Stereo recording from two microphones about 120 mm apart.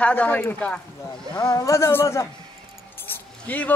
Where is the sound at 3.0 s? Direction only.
15° left (ahead or behind).